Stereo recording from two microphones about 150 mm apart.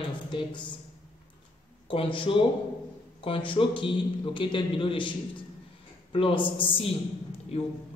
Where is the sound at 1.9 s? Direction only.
35° left (ahead or behind).